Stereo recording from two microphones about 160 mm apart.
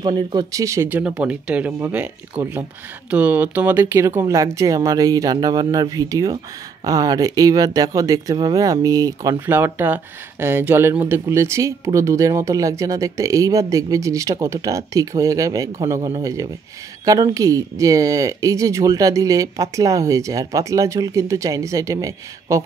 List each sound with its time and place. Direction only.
0.0 s speech: 30° right (ahead or behind)